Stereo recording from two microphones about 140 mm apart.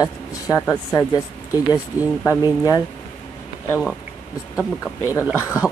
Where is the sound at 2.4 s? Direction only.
25° left (ahead or behind).